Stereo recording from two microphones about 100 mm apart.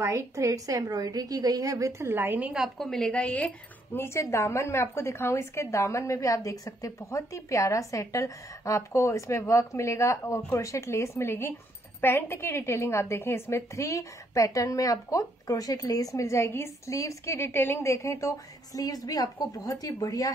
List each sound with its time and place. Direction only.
0.0 s a woman's voice: 30° right (ahead or behind)
2.5 s a woman's voice: centre (ahead or behind); by 20.2 s 35° left (ahead or behind)